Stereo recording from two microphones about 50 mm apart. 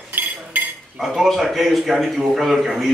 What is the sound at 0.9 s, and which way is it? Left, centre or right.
Speech, centre.